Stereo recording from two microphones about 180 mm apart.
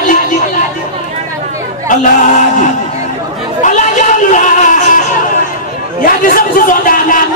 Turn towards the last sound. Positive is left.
turn(degrees=50)  # may be behind; listen again after turning